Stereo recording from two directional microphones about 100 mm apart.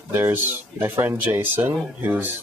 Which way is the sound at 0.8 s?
20° right (ahead or behind).